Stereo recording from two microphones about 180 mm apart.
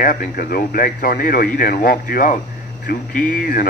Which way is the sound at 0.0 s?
50° left (ahead or behind).